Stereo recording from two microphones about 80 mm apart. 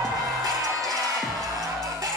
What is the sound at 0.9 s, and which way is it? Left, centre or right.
Music, right.